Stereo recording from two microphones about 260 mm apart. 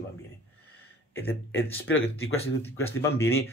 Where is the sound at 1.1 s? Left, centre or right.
Centre.